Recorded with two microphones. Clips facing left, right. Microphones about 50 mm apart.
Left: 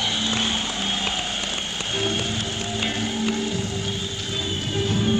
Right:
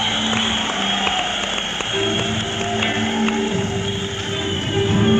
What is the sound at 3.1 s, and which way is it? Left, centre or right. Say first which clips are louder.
Music: right 5 dB; right.